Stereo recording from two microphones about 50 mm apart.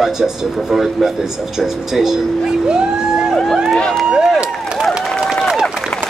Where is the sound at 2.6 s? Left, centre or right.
Centre.